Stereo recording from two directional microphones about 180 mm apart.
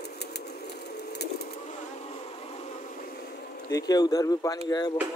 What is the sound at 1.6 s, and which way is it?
Insect, 40° left (ahead or behind).